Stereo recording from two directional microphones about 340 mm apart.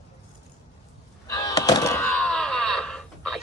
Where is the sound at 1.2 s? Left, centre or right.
Centre.